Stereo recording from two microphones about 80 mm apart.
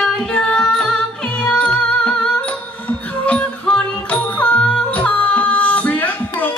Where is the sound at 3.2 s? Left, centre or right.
Centre.